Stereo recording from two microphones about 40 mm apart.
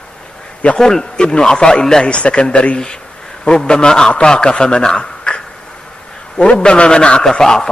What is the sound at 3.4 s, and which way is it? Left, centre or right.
A man's voice, centre.